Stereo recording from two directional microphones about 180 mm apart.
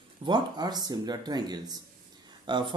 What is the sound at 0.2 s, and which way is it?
Speech, 25° right (ahead or behind).